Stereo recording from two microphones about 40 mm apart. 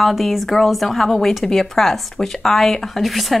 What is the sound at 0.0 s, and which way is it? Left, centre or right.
Speech, centre.